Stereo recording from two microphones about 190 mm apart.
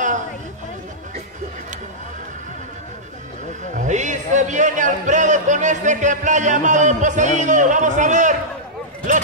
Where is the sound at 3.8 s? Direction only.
40° right (ahead or behind).